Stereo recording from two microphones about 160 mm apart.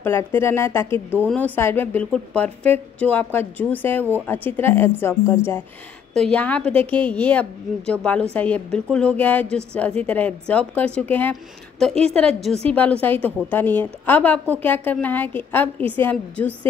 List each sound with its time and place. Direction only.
0.0 s a woman's voice: 15° left (ahead or behind)
6.1 s a woman's voice: 5° left (ahead or behind)